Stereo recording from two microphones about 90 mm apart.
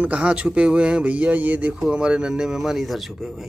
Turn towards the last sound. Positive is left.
turn(degrees=-5)  # may be behind; listen again after turning